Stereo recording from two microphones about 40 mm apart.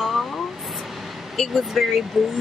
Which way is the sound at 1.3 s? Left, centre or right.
Centre.